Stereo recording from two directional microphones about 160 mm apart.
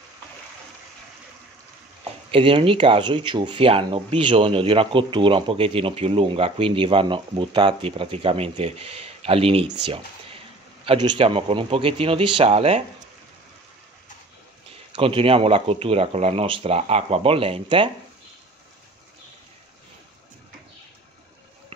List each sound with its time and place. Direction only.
2.3 s speech: 35° right (ahead or behind)
9.8 s a sound: 35° right (ahead or behind)
10.9 s speech: 30° right (ahead or behind)
14.9 s speech: 35° right (ahead or behind)